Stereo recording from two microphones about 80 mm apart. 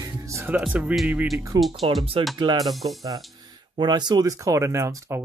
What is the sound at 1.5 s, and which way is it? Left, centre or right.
Speech, right.